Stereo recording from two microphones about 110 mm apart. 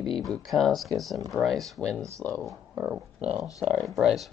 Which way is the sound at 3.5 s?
30° left (ahead or behind).